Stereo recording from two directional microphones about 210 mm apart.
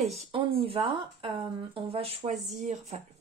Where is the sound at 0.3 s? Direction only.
25° right (ahead or behind).